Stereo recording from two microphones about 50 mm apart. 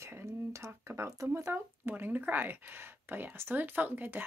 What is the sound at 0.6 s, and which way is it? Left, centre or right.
Speech, right.